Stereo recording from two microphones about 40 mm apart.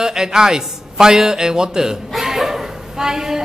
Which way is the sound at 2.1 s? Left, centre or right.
Centre.